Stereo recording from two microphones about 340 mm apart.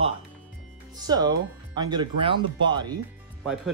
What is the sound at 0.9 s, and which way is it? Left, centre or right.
Speech, centre.